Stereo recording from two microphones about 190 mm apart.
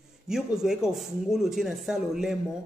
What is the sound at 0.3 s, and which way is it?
A man's voice, centre (ahead or behind).